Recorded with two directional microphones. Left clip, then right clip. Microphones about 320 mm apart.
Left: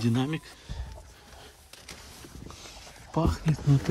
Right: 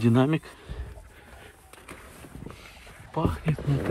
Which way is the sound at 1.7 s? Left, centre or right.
Centre.